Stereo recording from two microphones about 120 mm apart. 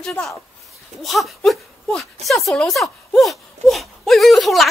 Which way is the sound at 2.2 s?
Centre (ahead or behind).